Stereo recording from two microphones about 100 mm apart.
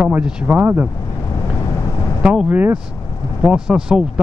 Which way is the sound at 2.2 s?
10° right (ahead or behind).